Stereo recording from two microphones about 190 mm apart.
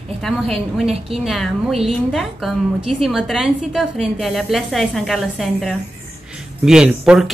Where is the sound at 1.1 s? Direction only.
Centre (ahead or behind).